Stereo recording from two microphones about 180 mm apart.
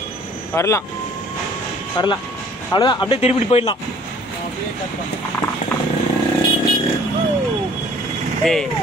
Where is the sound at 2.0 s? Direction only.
25° left (ahead or behind).